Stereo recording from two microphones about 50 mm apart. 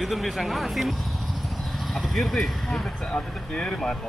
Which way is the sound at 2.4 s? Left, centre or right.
Centre.